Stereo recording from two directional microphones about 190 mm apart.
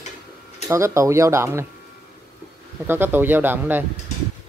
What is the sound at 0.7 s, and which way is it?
Speech, 15° right (ahead or behind).